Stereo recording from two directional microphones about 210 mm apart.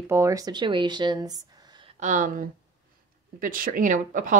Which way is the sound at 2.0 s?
35° right (ahead or behind).